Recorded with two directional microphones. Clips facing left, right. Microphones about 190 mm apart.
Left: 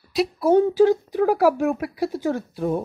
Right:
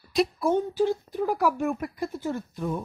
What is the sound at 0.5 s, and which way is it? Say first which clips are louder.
A woman's voice: left 11 dB; 90° left.